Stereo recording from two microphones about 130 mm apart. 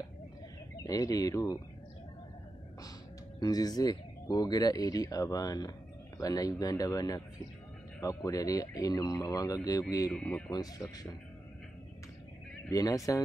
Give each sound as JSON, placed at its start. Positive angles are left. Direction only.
{"t": 0.8, "sound": "speech", "side_deg": 25}
{"t": 3.3, "sound": "speech", "side_deg": 30}
{"t": 10.1, "sound": "speech", "side_deg": 5}
{"t": 10.5, "sound": "speech", "side_deg": 30}
{"t": 12.6, "sound": "speech", "side_deg": 25}